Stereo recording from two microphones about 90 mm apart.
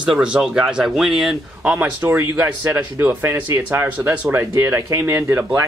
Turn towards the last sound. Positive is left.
turn(degrees=-30)  # may be behind; listen again after turning